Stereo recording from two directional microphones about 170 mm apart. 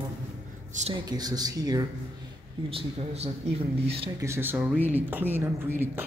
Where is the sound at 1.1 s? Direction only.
25° right (ahead or behind).